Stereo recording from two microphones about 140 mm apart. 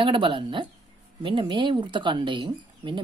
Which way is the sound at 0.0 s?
35° right (ahead or behind).